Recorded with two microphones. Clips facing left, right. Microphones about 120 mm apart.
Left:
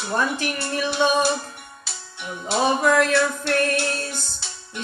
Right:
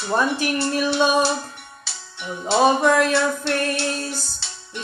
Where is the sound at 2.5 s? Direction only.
25° right (ahead or behind).